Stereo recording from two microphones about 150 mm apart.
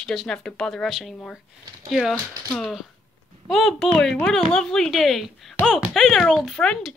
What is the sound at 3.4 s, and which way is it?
A woman's voice, centre (ahead or behind).